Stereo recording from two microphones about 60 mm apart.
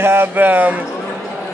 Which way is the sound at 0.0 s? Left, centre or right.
Right.